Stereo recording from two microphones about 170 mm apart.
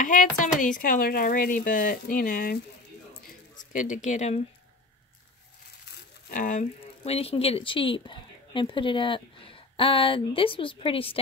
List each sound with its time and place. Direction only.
0.0 s a sound: 50° left (ahead or behind)
0.6 s speech: 50° left (ahead or behind)
3.5 s speech: 50° left (ahead or behind)
6.2 s speech: 50° left (ahead or behind)
7.0 s speech: 35° left (ahead or behind)